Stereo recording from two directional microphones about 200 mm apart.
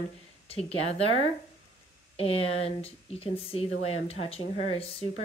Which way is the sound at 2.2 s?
30° left (ahead or behind).